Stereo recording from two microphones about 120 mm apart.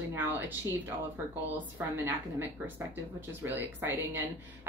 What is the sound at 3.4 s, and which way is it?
Speech, 15° right (ahead or behind).